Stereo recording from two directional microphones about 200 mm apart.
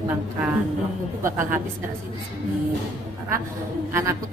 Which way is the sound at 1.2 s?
15° right (ahead or behind).